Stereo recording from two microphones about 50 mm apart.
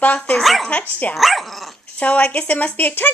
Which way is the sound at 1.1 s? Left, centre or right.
Centre.